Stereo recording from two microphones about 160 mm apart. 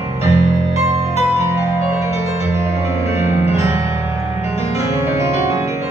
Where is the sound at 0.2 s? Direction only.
20° right (ahead or behind).